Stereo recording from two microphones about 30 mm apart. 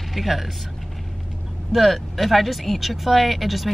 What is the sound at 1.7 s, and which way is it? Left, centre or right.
Speech, centre.